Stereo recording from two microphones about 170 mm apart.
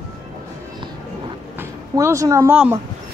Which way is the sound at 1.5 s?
15° right (ahead or behind).